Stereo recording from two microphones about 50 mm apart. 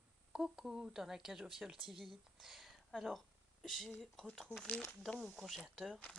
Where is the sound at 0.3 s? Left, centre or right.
Centre.